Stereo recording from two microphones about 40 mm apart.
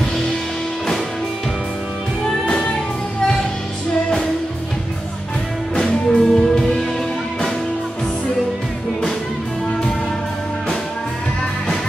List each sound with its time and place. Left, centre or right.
2.4 s music: left
5.9 s music: centre